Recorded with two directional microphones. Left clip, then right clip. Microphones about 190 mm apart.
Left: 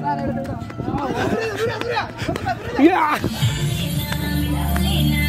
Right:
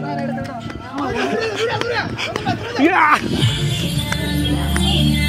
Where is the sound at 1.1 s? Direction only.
35° left (ahead or behind).